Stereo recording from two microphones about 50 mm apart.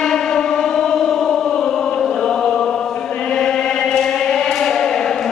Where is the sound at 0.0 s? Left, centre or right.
Centre.